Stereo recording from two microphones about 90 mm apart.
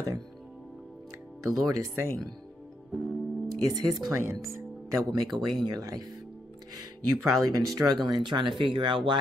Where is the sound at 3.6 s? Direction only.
45° right (ahead or behind).